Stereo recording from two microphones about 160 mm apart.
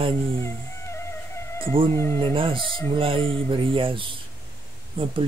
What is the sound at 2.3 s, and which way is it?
Speech, 35° right (ahead or behind).